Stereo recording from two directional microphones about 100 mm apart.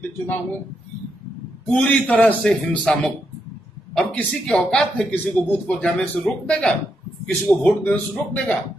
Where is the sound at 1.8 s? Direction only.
15° left (ahead or behind).